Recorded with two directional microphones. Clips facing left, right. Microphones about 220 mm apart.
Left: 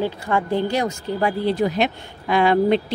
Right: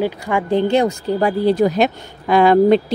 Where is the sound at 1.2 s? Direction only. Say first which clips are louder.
Right 5 dB; 40° right (ahead or behind).